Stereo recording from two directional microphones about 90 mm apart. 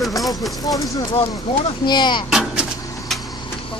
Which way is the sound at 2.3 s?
5° right (ahead or behind).